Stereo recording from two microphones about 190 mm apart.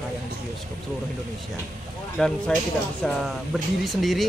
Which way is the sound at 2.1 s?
5° left (ahead or behind).